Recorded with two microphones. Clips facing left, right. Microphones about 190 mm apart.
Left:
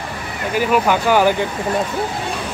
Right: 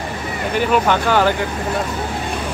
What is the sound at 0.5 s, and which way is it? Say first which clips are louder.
Speech: even; 5° left (ahead or behind).